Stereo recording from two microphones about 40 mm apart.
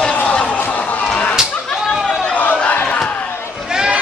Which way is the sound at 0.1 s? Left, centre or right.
Left.